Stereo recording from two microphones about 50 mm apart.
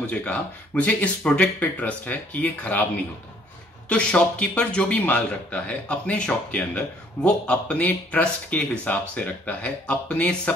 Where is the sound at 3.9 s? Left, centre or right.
Left.